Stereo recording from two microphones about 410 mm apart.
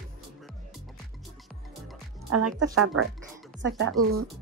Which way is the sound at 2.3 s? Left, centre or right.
Right.